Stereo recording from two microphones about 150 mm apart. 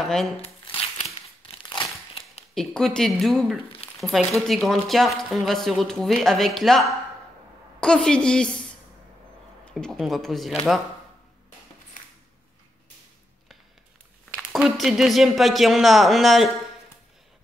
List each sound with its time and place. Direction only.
0.0 s speech: centre (ahead or behind)
0.4 s a sound: 40° left (ahead or behind)
1.5 s crumpling: 35° left (ahead or behind)
2.5 s speech: centre (ahead or behind)
9.7 s speech: 5° left (ahead or behind)
14.3 s speech: 5° right (ahead or behind)